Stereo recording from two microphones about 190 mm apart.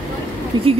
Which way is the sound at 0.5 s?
25° right (ahead or behind).